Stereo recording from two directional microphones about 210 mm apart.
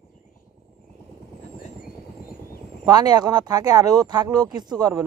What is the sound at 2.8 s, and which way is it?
Speech, 20° right (ahead or behind).